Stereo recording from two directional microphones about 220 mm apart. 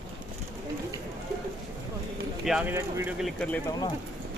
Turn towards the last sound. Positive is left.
turn(degrees=0)  # may be behind; listen again after turning